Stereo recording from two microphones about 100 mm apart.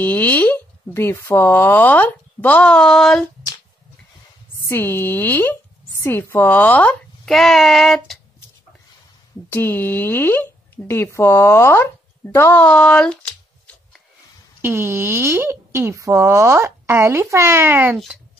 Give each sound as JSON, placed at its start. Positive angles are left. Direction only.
{"t": 0.0, "sound": "speech", "side_deg": 15}
{"t": 4.6, "sound": "speech", "side_deg": 25}
{"t": 7.2, "sound": "speech", "side_deg": 5}
{"t": 9.5, "sound": "speech", "side_deg": 20}
{"t": 12.6, "sound": "shuffling cards", "side_deg": 15}
{"t": 14.6, "sound": "speech", "side_deg": -20}